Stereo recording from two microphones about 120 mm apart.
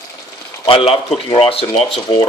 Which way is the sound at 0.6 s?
50° left (ahead or behind).